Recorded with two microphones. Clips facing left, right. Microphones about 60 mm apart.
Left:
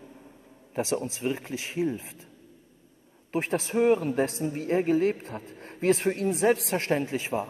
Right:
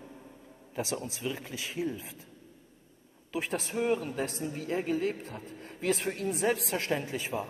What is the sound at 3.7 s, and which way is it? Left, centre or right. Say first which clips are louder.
A woman's voice: left 8 dB; left.